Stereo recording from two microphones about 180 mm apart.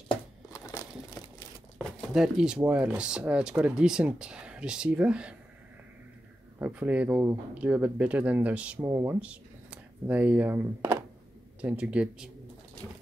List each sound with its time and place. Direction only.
0.1 s crumpling: 20° left (ahead or behind)
1.8 s speech: centre (ahead or behind)
6.6 s speech: 5° right (ahead or behind)
12.8 s a sound: 15° left (ahead or behind)